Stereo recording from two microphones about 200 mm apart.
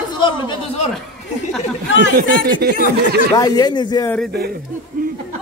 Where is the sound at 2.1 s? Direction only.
50° right (ahead or behind).